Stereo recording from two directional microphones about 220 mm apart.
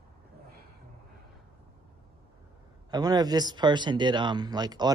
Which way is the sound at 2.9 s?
15° right (ahead or behind).